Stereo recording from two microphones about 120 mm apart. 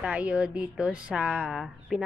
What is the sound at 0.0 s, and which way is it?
A woman's voice, 10° right (ahead or behind).